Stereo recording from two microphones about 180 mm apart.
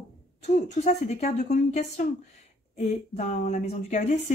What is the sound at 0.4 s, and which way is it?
Speech, 40° left (ahead or behind).